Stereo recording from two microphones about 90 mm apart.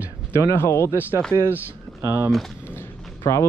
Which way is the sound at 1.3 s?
45° right (ahead or behind).